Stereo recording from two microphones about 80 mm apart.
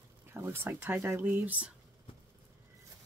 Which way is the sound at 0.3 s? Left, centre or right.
Right.